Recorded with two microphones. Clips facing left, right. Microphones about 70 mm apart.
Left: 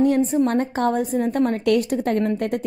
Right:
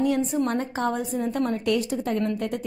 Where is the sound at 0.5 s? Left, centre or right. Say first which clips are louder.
Left 5 dB; left.